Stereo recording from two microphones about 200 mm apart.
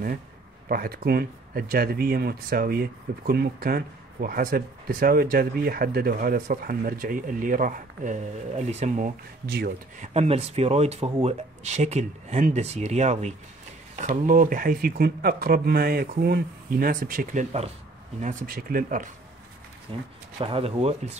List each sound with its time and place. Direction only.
0.7 s speech: 45° right (ahead or behind)
9.5 s speech: 50° right (ahead or behind)
18.2 s speech: 45° right (ahead or behind)
19.9 s speech: 25° right (ahead or behind)